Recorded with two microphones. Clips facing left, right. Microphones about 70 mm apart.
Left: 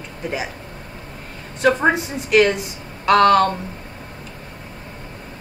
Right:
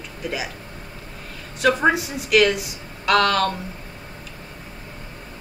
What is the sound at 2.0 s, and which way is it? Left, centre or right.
Speech, left.